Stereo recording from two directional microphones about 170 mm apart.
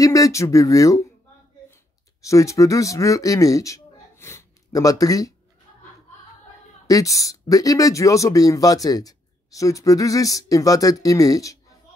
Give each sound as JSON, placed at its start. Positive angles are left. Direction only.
{"t": 0.0, "sound": "speech", "side_deg": 20}
{"t": 2.2, "sound": "speech", "side_deg": 20}
{"t": 6.9, "sound": "speech", "side_deg": 20}